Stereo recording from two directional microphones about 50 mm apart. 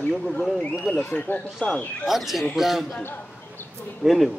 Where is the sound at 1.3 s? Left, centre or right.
Left.